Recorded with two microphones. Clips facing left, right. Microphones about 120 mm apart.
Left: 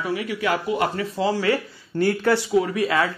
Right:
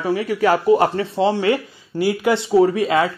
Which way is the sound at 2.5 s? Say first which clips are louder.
Right 6 dB; 25° right (ahead or behind).